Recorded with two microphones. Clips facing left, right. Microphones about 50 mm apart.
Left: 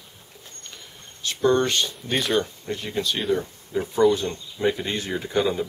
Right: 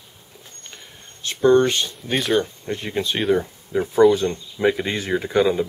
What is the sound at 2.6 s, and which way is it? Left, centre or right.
Speech, centre.